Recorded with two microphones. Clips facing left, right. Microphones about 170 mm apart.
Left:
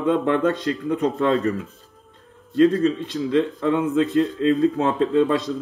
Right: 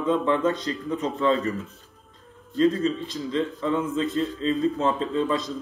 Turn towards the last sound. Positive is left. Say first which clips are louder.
# left 6 dB
turn(degrees=65)  # may be behind; listen again after turning